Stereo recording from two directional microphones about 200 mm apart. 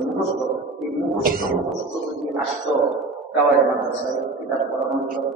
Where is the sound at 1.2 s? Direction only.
45° right (ahead or behind).